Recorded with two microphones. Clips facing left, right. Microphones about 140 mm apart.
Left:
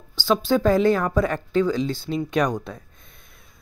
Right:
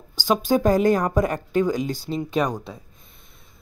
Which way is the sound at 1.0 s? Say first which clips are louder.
Even; 15° right (ahead or behind).